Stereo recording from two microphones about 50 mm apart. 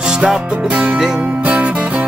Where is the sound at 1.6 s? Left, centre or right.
Right.